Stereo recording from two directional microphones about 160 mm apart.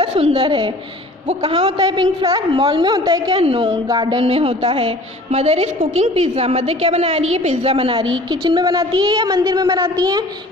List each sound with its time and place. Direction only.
0.0 s a woman's voice: 35° right (ahead or behind)
1.9 s a woman's voice: 25° right (ahead or behind)